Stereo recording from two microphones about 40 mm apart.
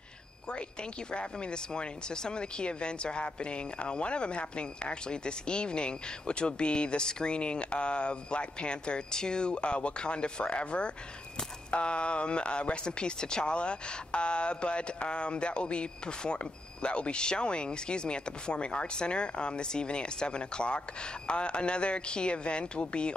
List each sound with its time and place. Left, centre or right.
1.1 s speech: left